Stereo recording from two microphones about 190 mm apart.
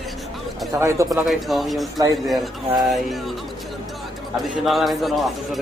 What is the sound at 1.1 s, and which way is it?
Speech, centre (ahead or behind).